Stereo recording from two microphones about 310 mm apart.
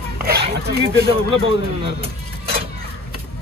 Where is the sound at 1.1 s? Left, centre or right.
Centre.